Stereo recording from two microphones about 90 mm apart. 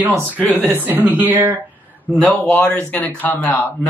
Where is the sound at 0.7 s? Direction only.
20° right (ahead or behind).